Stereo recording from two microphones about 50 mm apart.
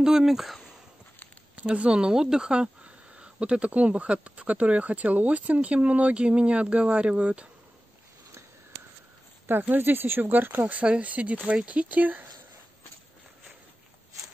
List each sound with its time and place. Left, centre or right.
0.0 s speech: centre
1.6 s speech: right
9.5 s speech: right